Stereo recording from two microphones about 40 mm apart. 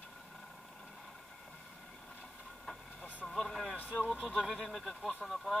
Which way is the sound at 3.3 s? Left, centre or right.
Centre.